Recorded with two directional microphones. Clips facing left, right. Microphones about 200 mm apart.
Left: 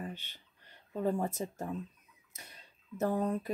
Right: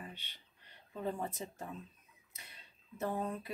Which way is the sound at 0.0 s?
45° left (ahead or behind).